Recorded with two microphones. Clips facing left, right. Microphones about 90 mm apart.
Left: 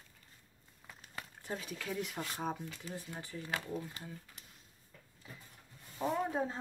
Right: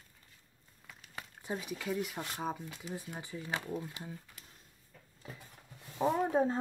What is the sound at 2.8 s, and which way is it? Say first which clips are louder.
Speech: right 4 dB; 15° right (ahead or behind).